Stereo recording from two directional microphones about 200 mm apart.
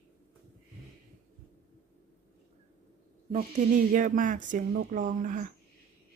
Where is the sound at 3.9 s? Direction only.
40° right (ahead or behind).